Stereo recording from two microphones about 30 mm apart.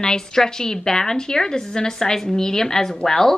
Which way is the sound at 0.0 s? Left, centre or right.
Left.